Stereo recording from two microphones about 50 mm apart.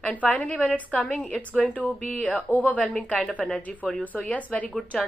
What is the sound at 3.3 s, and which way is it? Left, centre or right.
Speech, centre.